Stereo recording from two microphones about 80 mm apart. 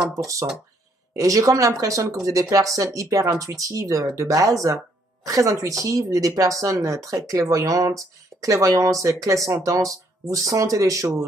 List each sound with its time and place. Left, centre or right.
0.2 s speech: right